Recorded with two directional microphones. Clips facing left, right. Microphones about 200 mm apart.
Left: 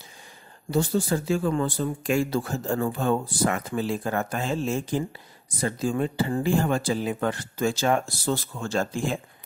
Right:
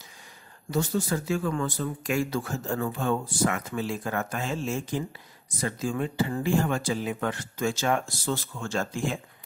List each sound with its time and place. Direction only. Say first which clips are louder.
0.7 s speech: left 3 dB; 30° left (ahead or behind)